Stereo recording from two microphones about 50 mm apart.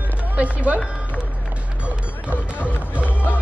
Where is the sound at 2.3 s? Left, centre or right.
Left.